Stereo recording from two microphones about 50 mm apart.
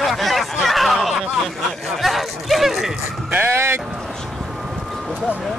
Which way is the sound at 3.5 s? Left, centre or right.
Right.